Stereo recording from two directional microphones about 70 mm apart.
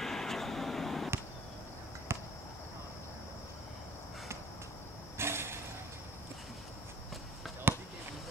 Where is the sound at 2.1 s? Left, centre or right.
Right.